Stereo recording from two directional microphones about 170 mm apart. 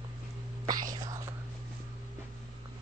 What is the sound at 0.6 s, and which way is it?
Whispering, 25° right (ahead or behind).